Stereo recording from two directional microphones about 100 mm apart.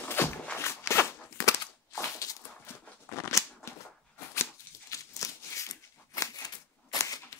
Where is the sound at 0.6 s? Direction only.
25° left (ahead or behind).